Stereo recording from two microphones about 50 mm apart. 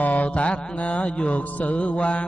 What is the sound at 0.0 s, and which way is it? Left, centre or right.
Mantra, left.